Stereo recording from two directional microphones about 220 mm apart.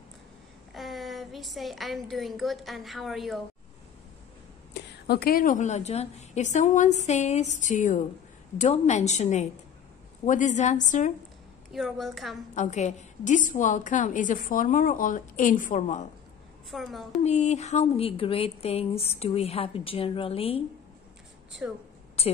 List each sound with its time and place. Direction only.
0.7 s a woman's voice: centre (ahead or behind)
4.7 s a woman's voice: 50° left (ahead or behind)
11.7 s a woman's voice: centre (ahead or behind)
12.5 s a woman's voice: 30° left (ahead or behind)
16.7 s a woman's voice: centre (ahead or behind)
17.2 s speech: 30° left (ahead or behind)
22.2 s speech: 25° left (ahead or behind)